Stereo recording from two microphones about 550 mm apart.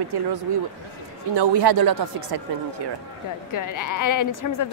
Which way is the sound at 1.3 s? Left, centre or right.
Right.